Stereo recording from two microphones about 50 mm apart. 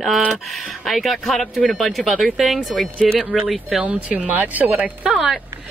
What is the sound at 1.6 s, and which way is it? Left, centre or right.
Speech, left.